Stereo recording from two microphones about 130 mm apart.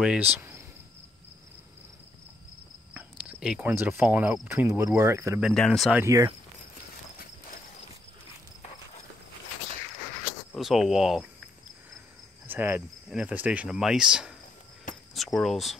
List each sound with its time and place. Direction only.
0.0 s cricket: 5° right (ahead or behind)
0.4 s cricket: 20° right (ahead or behind)
2.9 s cricket: 10° right (ahead or behind)
3.7 s speech: 20° right (ahead or behind)
4.0 s cricket: 10° right (ahead or behind)
4.6 s speech: 20° right (ahead or behind)
5.5 s speech: 5° left (ahead or behind)
6.0 s speech: 25° right (ahead or behind)
10.5 s speech: centre (ahead or behind)
12.4 s cricket: 15° right (ahead or behind)
15.1 s speech: centre (ahead or behind)